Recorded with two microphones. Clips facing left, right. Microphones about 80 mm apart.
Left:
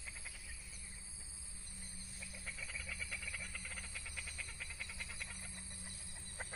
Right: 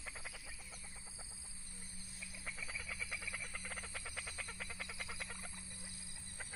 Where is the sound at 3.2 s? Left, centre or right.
Right.